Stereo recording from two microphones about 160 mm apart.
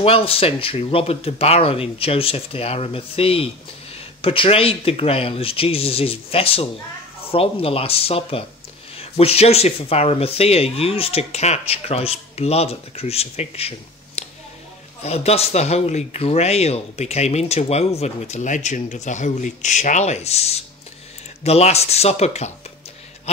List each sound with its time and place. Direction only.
0.0 s speech: 35° left (ahead or behind)